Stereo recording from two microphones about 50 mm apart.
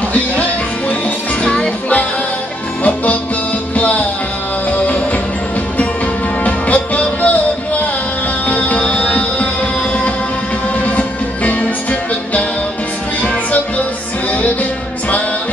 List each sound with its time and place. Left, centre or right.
0.1 s music: left
2.8 s music: left
6.4 s music: left
8.5 s music: left
10.8 s music: left